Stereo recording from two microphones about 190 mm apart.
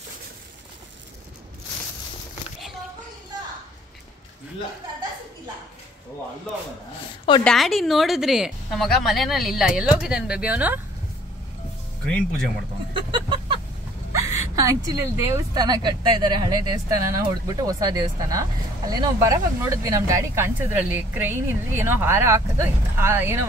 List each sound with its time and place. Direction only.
7.4 s a woman's voice: centre (ahead or behind)
12.1 s speech: 5° left (ahead or behind)
12.9 s a sound: 25° right (ahead or behind)
14.2 s speech: 15° right (ahead or behind)